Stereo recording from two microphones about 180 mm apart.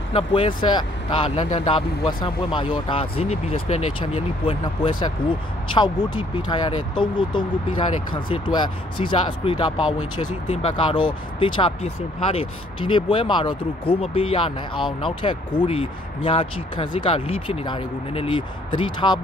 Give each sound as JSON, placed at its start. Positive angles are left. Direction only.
{"t": 0.1, "sound": "speech", "side_deg": 30}